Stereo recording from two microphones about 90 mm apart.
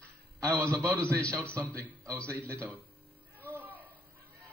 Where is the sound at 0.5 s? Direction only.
15° left (ahead or behind).